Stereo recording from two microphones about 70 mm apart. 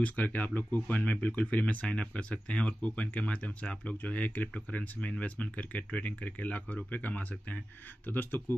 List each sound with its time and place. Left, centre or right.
0.0 s speech: left